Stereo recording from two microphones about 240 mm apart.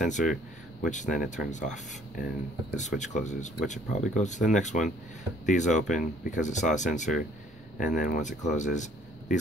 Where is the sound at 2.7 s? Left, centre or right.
Left.